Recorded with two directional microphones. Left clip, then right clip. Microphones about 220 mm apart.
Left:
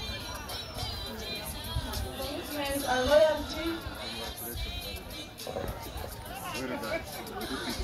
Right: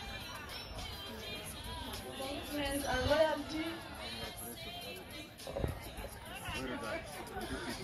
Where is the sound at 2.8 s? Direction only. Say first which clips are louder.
Left 8 dB; 45° left (ahead or behind).